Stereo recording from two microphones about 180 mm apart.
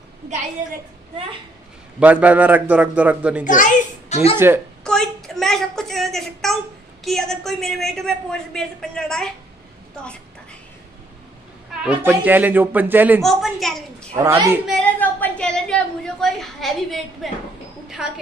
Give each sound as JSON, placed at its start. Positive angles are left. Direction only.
{"t": 2.0, "sound": "a man's voice", "side_deg": -10}
{"t": 4.1, "sound": "speech", "side_deg": 35}
{"t": 4.8, "sound": "a sound", "side_deg": 0}
{"t": 7.1, "sound": "a woman's voice", "side_deg": 0}
{"t": 11.8, "sound": "a man's voice", "side_deg": -10}
{"t": 13.2, "sound": "a woman's voice", "side_deg": 0}
{"t": 14.1, "sound": "a man's voice", "side_deg": -15}
{"t": 14.7, "sound": "a woman's voice", "side_deg": 10}